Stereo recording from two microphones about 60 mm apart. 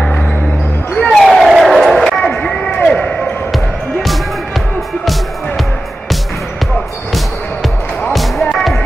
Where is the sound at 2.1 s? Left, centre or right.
Centre.